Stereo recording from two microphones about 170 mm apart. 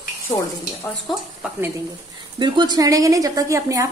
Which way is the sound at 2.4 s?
25° right (ahead or behind).